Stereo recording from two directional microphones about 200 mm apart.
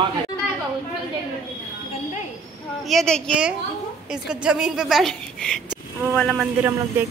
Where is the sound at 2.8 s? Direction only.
Centre (ahead or behind).